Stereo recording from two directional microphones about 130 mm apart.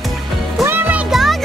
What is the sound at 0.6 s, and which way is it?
Music, 15° right (ahead or behind).